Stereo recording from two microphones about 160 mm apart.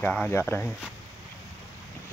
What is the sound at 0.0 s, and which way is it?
Speech, 10° left (ahead or behind).